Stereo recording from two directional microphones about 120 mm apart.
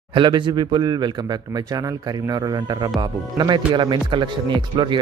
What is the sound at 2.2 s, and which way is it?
Speech, 35° right (ahead or behind).